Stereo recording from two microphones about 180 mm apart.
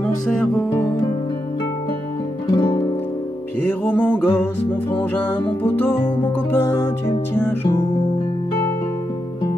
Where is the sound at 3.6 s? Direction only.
10° left (ahead or behind).